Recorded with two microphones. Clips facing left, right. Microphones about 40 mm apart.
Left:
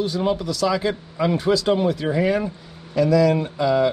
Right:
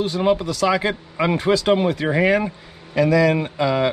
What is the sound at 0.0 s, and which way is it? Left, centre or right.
Speech, right.